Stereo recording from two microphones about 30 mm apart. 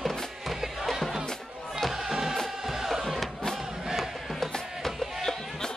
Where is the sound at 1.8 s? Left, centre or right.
Centre.